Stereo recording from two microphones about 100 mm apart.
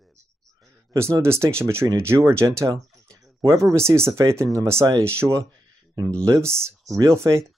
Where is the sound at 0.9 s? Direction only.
25° right (ahead or behind).